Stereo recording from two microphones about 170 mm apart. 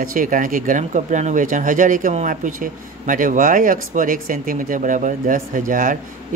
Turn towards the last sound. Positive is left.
turn(degrees=-50)  # may be behind; listen again after turning